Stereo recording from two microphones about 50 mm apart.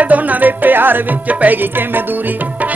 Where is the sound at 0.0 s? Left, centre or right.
Right.